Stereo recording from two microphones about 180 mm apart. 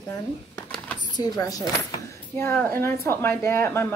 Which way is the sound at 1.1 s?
20° left (ahead or behind).